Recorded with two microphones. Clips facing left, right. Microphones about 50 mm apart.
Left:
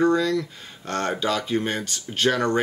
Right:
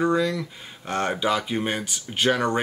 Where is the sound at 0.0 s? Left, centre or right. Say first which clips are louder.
Left 2 dB; centre.